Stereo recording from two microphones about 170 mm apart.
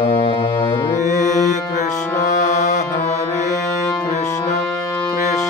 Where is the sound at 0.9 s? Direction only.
45° left (ahead or behind).